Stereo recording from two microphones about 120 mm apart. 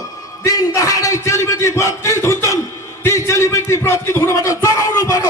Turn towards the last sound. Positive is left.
turn(degrees=30)  # may be behind; listen again after turning